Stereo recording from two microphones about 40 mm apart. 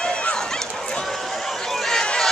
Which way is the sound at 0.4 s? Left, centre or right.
Centre.